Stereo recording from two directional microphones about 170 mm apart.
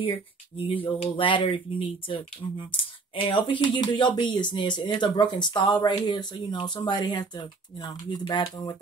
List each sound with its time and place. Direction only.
0.0 s speech: 35° left (ahead or behind)